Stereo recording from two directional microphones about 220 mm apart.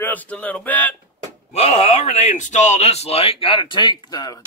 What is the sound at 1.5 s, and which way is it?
A man's voice, 25° left (ahead or behind).